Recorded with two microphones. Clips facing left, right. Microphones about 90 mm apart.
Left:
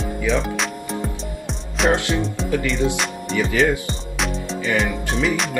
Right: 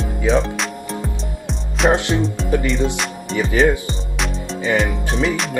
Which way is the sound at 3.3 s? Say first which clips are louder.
Right 3 dB; 30° right (ahead or behind).